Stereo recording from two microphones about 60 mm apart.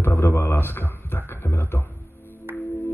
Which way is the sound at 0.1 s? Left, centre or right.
Left.